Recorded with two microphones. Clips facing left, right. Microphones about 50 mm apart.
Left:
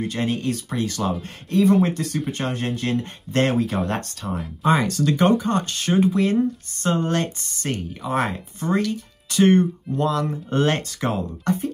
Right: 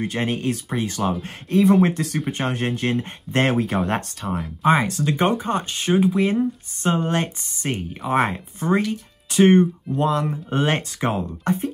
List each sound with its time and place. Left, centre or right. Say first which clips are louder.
0.0 s speech: even; right